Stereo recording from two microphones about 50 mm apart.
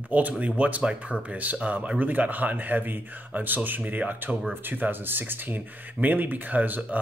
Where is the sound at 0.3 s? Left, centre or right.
Right.